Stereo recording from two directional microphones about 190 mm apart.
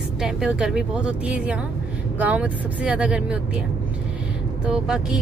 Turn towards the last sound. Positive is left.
turn(degrees=-5)  # may be behind; listen again after turning